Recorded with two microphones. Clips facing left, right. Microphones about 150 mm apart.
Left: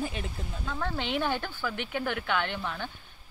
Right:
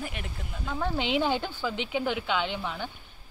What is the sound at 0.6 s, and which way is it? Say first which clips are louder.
Speech: right 3 dB; 15° right (ahead or behind).